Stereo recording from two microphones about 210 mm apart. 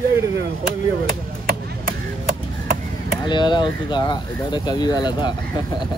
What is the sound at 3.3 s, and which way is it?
Speech, 20° left (ahead or behind).